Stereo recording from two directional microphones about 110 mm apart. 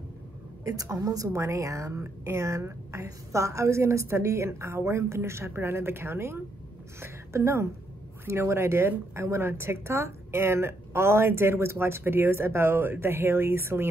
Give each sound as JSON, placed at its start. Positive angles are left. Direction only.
{"t": 0.7, "sound": "a woman's voice", "side_deg": -30}